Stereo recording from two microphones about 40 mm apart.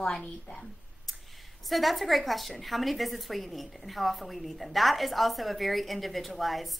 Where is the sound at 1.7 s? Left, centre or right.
Centre.